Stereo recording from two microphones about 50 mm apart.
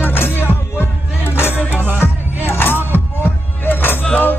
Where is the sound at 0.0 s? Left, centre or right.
Left.